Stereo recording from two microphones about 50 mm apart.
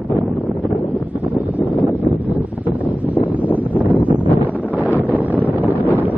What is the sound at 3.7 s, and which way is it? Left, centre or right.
Wind noise, right.